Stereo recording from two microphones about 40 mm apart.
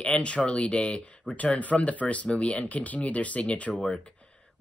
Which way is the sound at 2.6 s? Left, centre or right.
Left.